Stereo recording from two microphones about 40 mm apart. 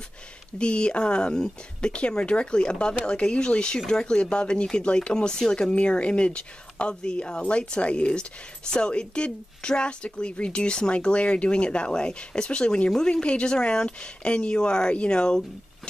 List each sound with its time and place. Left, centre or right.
0.6 s speech: left